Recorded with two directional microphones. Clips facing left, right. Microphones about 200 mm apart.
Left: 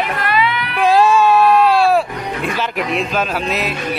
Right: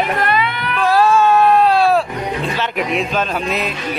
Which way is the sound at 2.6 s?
Centre (ahead or behind).